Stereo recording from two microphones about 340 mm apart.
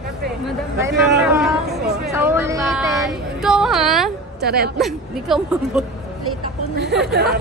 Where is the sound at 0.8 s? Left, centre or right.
Centre.